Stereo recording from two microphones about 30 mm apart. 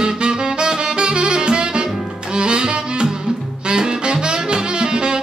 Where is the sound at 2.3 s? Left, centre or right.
Right.